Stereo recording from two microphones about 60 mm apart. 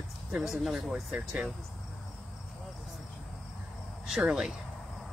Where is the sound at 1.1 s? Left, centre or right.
Centre.